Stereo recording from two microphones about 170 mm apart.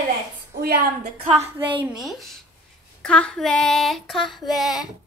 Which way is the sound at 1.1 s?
35° right (ahead or behind).